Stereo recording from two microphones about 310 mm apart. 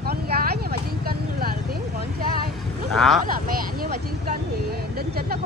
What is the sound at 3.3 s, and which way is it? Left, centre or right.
Speech, right.